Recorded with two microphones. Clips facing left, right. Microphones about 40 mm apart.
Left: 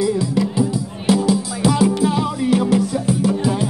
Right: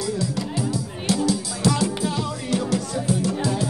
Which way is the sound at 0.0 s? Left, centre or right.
Centre.